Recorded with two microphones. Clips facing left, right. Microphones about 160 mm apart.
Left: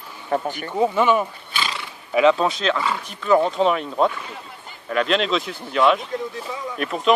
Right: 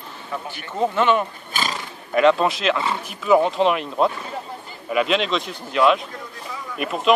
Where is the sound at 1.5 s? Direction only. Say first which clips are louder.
Right 1 dB; 45° right (ahead or behind).